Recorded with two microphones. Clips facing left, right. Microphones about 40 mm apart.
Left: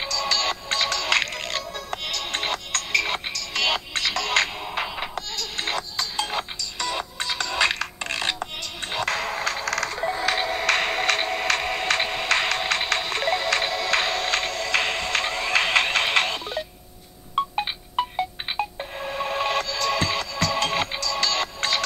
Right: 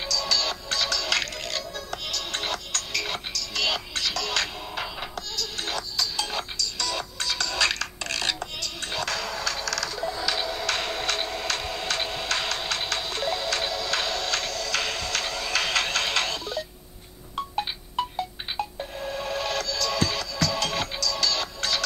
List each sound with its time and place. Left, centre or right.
0.0 s music: left